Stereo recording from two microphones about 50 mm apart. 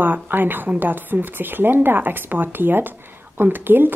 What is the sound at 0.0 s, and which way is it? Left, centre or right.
A woman's voice, right.